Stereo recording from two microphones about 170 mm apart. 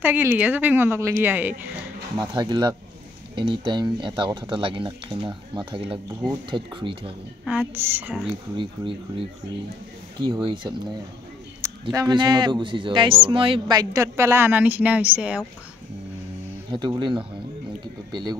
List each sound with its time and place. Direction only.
0.0 s a woman's voice: 15° right (ahead or behind)
2.1 s speech: 25° right (ahead or behind)
7.4 s a woman's voice: 10° right (ahead or behind)
8.5 s speech: 30° right (ahead or behind)
11.9 s speech: 25° right (ahead or behind); by 15.4 s 5° right (ahead or behind)
16.7 s speech: 25° right (ahead or behind)